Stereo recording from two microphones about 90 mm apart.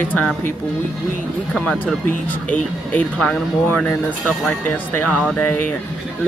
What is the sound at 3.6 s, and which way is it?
Speech, 20° left (ahead or behind).